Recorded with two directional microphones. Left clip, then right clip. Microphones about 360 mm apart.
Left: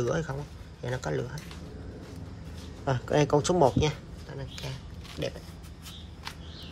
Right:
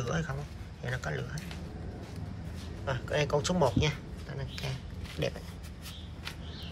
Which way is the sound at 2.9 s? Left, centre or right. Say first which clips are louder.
Left 5 dB; centre.